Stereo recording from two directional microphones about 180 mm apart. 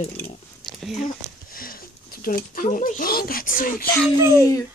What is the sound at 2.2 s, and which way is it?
Speech, 50° left (ahead or behind).